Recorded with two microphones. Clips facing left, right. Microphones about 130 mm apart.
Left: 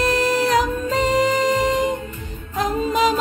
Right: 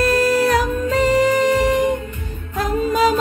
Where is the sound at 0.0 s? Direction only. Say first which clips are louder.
Right 3 dB; 20° left (ahead or behind).